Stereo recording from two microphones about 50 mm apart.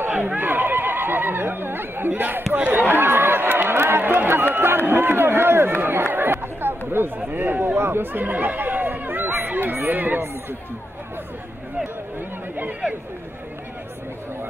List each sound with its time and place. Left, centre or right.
0.4 s neigh: right
2.5 s chatter: right
4.6 s run: right
7.2 s chatter: right
9.8 s speech: right